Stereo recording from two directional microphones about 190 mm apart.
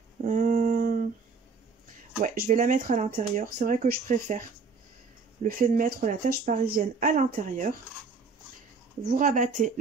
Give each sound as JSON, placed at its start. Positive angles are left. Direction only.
{"t": 0.2, "sound": "a sound", "side_deg": -45}
{"t": 2.2, "sound": "speech", "side_deg": -45}
{"t": 5.4, "sound": "speech", "side_deg": -45}
{"t": 9.0, "sound": "speech", "side_deg": -45}